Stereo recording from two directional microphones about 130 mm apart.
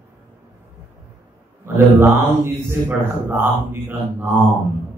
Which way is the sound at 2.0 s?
15° right (ahead or behind).